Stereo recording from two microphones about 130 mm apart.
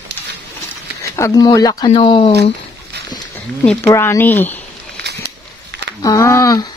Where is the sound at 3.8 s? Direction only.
20° left (ahead or behind).